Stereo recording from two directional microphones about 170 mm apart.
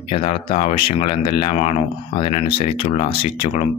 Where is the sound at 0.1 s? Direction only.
30° left (ahead or behind).